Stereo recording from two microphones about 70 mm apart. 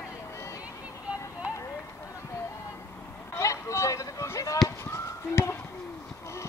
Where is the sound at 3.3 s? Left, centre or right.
Left.